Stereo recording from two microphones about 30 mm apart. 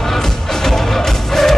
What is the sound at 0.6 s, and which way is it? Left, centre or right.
Music, centre.